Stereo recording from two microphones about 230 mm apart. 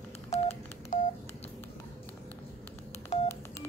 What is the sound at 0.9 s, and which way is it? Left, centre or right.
Telephone dialing, left.